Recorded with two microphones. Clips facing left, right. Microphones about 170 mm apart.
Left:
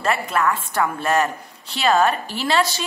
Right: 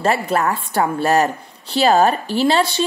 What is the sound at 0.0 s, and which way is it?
A woman's voice, 35° right (ahead or behind).